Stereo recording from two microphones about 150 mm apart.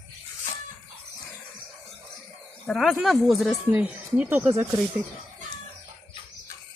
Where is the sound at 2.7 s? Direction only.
Centre (ahead or behind); by 4.6 s 15° right (ahead or behind).